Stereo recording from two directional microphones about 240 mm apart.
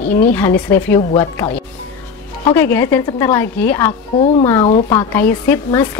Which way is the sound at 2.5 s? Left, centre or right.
Centre.